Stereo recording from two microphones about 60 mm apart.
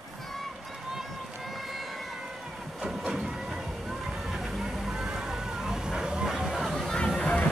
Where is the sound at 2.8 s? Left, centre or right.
Centre.